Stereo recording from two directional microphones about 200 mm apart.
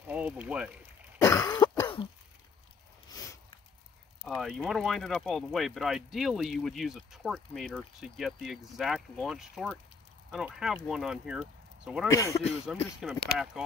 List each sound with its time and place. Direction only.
0.1 s speech: 5° right (ahead or behind)
1.2 s cough: 15° left (ahead or behind)
4.4 s speech: centre (ahead or behind)
12.1 s speech: 15° left (ahead or behind)
12.7 s speech: centre (ahead or behind)